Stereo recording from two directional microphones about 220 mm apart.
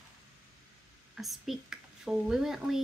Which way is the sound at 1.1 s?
Centre (ahead or behind).